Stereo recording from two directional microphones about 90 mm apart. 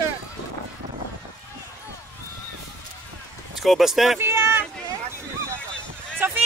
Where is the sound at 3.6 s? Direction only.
Centre (ahead or behind).